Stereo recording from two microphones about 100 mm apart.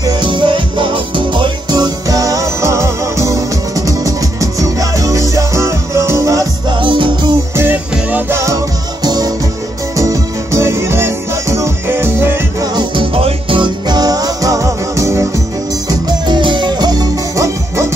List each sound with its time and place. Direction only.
0.0 s music: 50° right (ahead or behind); by 6.4 s 30° right (ahead or behind)
6.7 s music: 55° right (ahead or behind)
7.5 s music: 20° right (ahead or behind)
12.7 s music: 60° right (ahead or behind)
13.8 s music: 40° right (ahead or behind)
15.9 s music: 45° right (ahead or behind)